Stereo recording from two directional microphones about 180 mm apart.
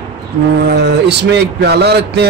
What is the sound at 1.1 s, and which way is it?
A man's voice, 70° right (ahead or behind).